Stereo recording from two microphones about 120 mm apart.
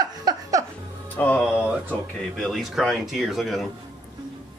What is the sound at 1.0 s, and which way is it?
Music, 15° left (ahead or behind).